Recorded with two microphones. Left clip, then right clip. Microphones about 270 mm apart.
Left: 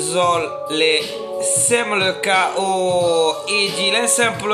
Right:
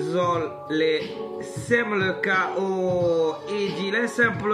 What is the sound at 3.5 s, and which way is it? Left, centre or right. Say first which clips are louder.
Music: left 8 dB; centre.